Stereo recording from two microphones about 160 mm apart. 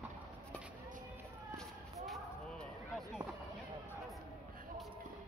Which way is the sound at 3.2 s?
20° right (ahead or behind).